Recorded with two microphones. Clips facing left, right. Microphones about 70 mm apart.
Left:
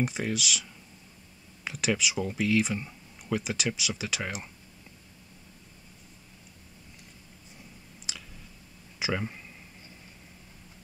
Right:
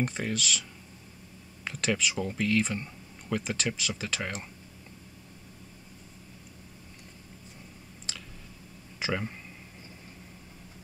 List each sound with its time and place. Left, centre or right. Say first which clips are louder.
0.0 s speech: left 1 dB; centre
8.1 s a sound: even; centre
9.0 s speech: left 1 dB; centre